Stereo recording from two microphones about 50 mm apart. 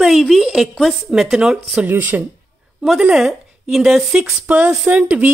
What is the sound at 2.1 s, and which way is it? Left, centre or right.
Speech, right.